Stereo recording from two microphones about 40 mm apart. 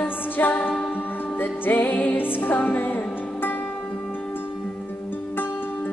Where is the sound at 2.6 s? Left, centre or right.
Left.